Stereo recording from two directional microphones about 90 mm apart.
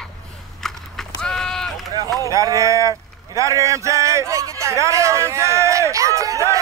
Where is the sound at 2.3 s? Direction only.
35° right (ahead or behind).